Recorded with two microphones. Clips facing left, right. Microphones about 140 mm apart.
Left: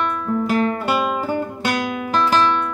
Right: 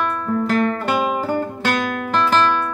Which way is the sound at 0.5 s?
15° left (ahead or behind).